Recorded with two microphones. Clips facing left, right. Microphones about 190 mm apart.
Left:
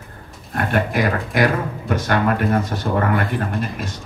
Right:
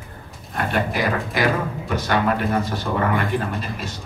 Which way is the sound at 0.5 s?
50° left (ahead or behind).